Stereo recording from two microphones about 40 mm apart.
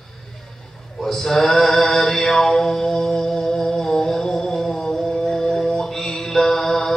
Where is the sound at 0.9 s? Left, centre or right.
Centre.